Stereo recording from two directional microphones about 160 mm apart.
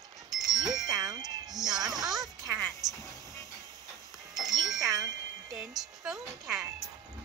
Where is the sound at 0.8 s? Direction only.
25° right (ahead or behind).